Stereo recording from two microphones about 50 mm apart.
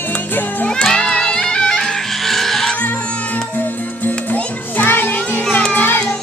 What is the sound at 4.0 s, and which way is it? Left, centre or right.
Music, left.